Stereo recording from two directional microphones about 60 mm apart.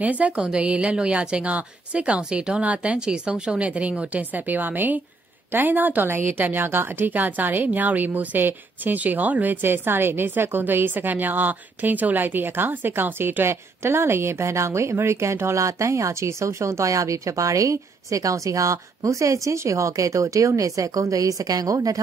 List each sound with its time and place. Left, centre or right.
0.0 s a woman's voice: right